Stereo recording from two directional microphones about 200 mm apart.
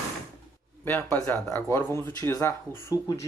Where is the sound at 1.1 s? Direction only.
10° left (ahead or behind).